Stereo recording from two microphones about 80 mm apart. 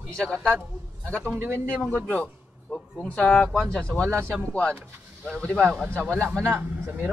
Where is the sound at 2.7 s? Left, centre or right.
Centre.